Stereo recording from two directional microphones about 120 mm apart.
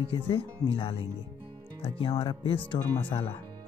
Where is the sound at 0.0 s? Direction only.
45° left (ahead or behind).